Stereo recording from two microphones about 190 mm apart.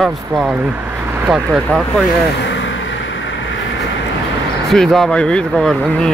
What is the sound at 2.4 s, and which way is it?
Vehicle, 70° left (ahead or behind).